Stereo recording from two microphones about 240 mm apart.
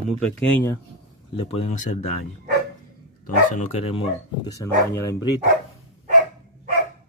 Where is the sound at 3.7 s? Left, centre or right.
Left.